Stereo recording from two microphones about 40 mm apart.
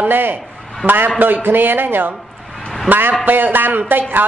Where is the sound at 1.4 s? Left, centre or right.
Right.